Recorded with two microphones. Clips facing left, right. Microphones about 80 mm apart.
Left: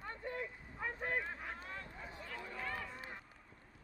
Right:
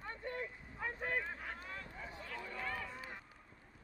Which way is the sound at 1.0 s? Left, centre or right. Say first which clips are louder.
Even; left.